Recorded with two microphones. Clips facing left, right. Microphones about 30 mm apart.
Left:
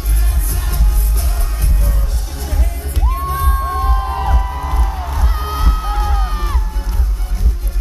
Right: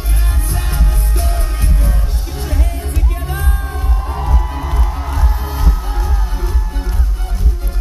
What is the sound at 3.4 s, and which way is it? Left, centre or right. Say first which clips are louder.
Music: left 6 dB; centre.